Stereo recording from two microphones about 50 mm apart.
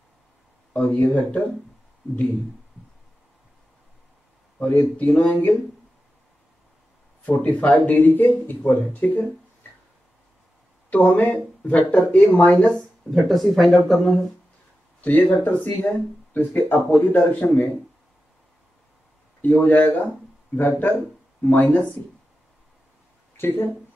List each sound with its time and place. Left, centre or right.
0.7 s speech: left
4.6 s speech: left
7.2 s speech: left
8.0 s speech: left
10.9 s speech: left
12.5 s speech: centre
15.0 s speech: left
19.4 s speech: left
23.3 s speech: left